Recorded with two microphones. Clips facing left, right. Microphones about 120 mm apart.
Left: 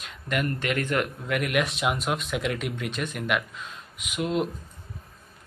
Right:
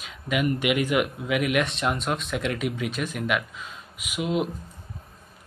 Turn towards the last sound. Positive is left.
turn(degrees=-5)  # may be behind; listen again after turning